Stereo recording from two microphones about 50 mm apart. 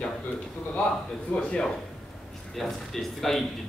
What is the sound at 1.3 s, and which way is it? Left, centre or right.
Speech, centre.